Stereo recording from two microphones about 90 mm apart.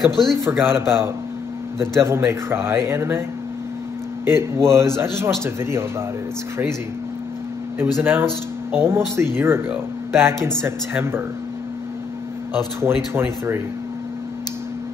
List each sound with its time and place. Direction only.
0.0 s speech: centre (ahead or behind)
0.4 s speech: 25° right (ahead or behind)
4.3 s speech: 30° right (ahead or behind)
8.0 s speech: 25° right (ahead or behind)
12.8 s speech: 25° right (ahead or behind)